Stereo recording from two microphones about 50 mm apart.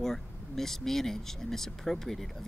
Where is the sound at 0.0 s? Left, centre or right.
Centre.